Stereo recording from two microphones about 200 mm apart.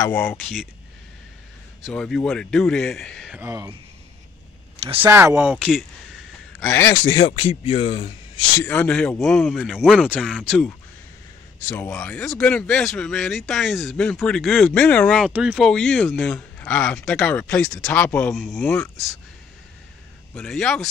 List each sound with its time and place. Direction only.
0.0 s speech: 10° left (ahead or behind)
1.9 s speech: 5° left (ahead or behind); by 3.7 s 10° right (ahead or behind)
5.0 s speech: 10° right (ahead or behind)
6.6 s speech: 10° left (ahead or behind)
7.1 s speech: 25° left (ahead or behind)
8.5 s speech: 5° left (ahead or behind)
20.3 s speech: 5° left (ahead or behind)